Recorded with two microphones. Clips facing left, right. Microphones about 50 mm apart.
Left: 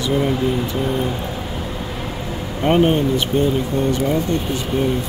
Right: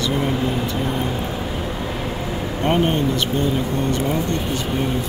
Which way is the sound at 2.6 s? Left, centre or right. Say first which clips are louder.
Left 4 dB; centre.